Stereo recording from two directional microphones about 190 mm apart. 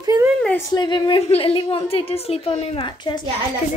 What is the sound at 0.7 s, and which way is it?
A woman's voice, 25° left (ahead or behind).